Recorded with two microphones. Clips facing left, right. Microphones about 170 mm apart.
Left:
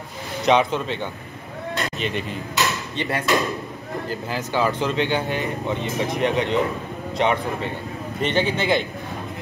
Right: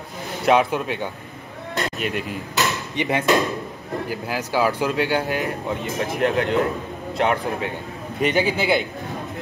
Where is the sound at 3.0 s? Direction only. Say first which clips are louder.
Right 4 dB; 20° right (ahead or behind).